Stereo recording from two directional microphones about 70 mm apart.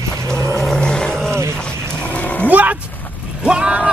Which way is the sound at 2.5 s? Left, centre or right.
Right.